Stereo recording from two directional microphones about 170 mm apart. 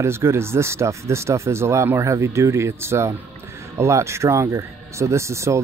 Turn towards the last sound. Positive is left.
turn(degrees=-15)  # may be behind; listen again after turning